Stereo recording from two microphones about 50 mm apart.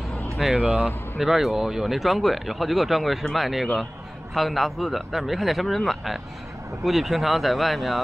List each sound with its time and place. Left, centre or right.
0.6 s speech: centre
1.1 s speech: centre